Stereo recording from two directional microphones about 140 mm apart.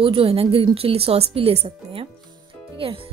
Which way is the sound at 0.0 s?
40° right (ahead or behind).